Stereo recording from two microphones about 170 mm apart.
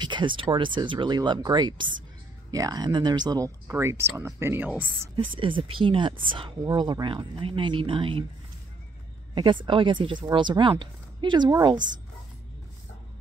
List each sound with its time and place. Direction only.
0.0 s speech: 30° right (ahead or behind); by 5.1 s 10° right (ahead or behind)
5.4 s speech: 30° right (ahead or behind)
9.3 s speech: 30° right (ahead or behind)